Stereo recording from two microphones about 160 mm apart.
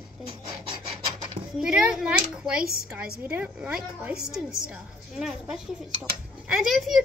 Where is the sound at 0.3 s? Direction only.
30° right (ahead or behind).